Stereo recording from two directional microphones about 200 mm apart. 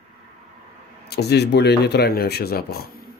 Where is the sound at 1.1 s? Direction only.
55° left (ahead or behind).